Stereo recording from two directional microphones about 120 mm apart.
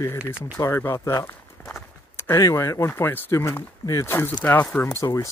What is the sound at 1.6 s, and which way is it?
Walk, 15° left (ahead or behind).